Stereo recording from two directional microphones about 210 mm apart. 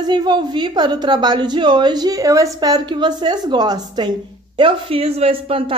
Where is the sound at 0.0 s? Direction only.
20° right (ahead or behind).